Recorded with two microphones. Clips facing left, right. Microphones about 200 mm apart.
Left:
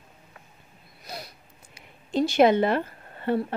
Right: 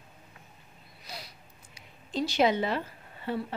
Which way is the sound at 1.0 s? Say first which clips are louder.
Left 6 dB; 50° left (ahead or behind).